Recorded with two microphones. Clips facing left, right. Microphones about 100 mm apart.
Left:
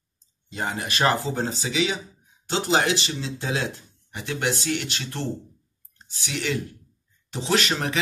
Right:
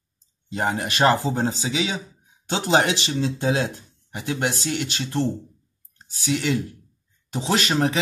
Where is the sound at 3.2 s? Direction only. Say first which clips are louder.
Right 6 dB; 45° right (ahead or behind).